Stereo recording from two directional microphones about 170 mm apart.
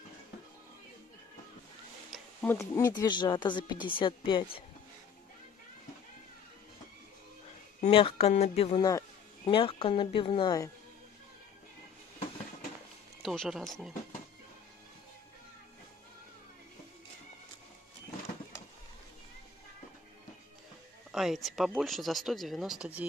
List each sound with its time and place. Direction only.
2.4 s speech: 15° left (ahead or behind)
7.8 s speech: 35° left (ahead or behind)
8.7 s speech: 20° left (ahead or behind)
9.4 s speech: 30° left (ahead or behind)
13.2 s speech: centre (ahead or behind)
21.1 s speech: centre (ahead or behind)